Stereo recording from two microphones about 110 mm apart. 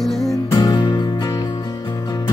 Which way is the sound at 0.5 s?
40° left (ahead or behind).